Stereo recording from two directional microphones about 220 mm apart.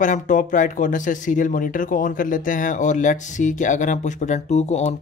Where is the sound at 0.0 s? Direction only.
35° left (ahead or behind).